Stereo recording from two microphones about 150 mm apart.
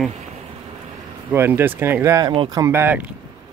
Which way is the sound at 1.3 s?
15° right (ahead or behind).